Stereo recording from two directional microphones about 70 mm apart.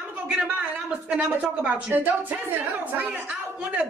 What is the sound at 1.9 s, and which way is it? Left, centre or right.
A man's voice, right.